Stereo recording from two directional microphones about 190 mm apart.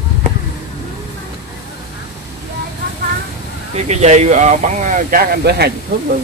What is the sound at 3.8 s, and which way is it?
Speech, 35° right (ahead or behind).